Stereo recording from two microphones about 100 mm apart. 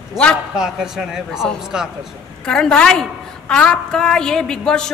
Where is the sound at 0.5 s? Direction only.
5° right (ahead or behind).